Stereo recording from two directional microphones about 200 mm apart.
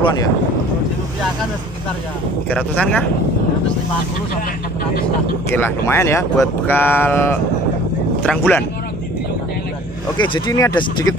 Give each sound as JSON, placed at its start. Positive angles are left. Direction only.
{"t": 0.0, "sound": "speech", "side_deg": 20}
{"t": 2.5, "sound": "speech", "side_deg": 5}
{"t": 5.5, "sound": "speech", "side_deg": 10}
{"t": 10.1, "sound": "speech", "side_deg": 25}